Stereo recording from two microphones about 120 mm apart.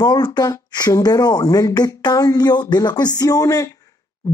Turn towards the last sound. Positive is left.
turn(degrees=30)  # may be behind; listen again after turning